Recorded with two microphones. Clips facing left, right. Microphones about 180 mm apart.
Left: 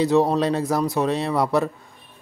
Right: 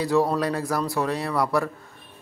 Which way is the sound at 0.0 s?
20° left (ahead or behind).